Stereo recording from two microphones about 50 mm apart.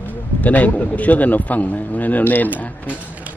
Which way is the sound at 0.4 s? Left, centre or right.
Left.